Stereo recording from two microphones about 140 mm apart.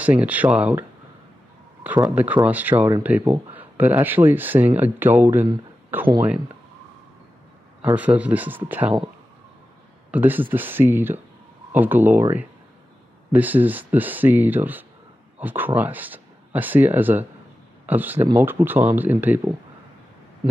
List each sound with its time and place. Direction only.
0.0 s speech: 10° right (ahead or behind)
2.0 s speech: 10° right (ahead or behind)
7.8 s speech: 10° right (ahead or behind)
10.1 s speech: 15° right (ahead or behind)